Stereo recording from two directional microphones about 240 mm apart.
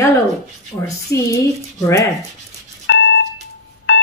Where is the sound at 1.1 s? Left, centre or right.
Left.